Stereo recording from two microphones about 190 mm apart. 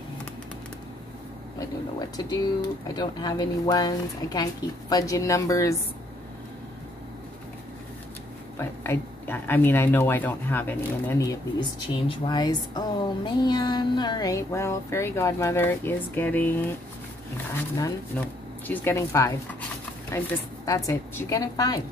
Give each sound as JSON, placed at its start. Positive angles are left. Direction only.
{"t": 2.0, "sound": "speech", "side_deg": 20}
{"t": 8.5, "sound": "speech", "side_deg": 10}
{"t": 18.7, "sound": "speech", "side_deg": 10}